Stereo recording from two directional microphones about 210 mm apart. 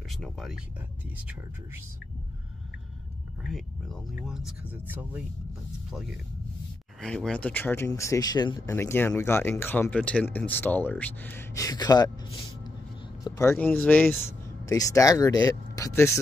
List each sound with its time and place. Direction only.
0.1 s speech: centre (ahead or behind)
3.4 s speech: centre (ahead or behind); by 12.1 s 20° left (ahead or behind)
13.2 s speech: 15° left (ahead or behind)